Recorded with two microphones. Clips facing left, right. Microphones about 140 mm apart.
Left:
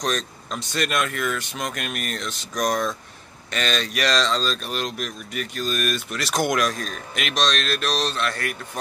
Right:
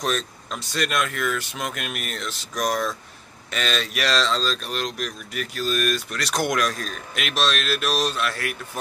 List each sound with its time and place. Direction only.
0.0 s speech: centre (ahead or behind)